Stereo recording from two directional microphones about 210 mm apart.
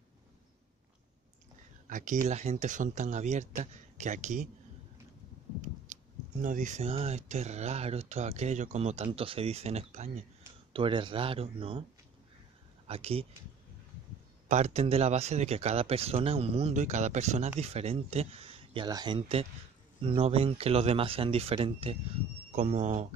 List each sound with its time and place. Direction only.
1.9 s speech: 40° right (ahead or behind)
6.4 s speech: 40° right (ahead or behind)
12.8 s speech: 30° right (ahead or behind)
14.5 s speech: 30° right (ahead or behind)